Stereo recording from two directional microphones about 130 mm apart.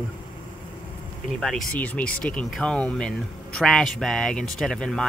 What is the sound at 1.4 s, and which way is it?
Speech, 5° left (ahead or behind).